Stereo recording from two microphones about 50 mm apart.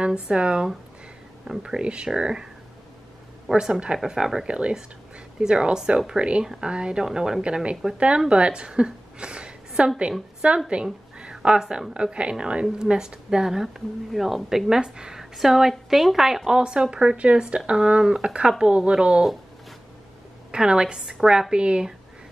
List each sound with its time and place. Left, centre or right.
0.0 s a woman's voice: centre
3.5 s a woman's voice: centre
7.1 s a woman's voice: centre
20.5 s a woman's voice: centre